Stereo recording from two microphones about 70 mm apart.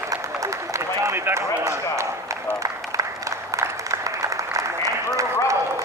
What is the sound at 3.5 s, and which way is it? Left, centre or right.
Applause, right.